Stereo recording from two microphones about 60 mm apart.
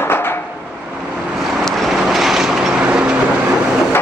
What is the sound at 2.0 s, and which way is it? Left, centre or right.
Vehicle, centre.